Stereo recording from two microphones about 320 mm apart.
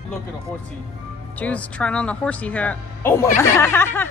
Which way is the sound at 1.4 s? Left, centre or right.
Centre.